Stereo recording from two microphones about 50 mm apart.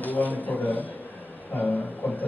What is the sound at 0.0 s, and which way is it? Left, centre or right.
A man's voice, left.